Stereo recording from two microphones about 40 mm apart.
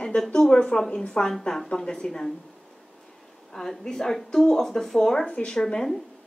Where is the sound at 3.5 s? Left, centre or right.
Centre.